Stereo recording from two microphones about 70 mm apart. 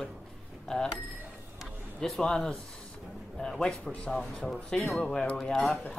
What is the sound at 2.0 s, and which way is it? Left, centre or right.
Speech, centre.